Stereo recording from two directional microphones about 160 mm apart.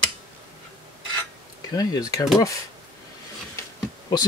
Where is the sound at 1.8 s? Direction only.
20° left (ahead or behind).